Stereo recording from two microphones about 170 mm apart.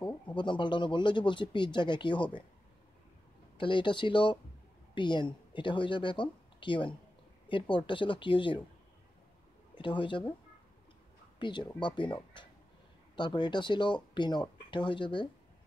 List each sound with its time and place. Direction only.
0.4 s speech: 30° left (ahead or behind)
3.5 s speech: 30° left (ahead or behind)
9.8 s speech: 30° left (ahead or behind)
11.3 s speech: 25° left (ahead or behind)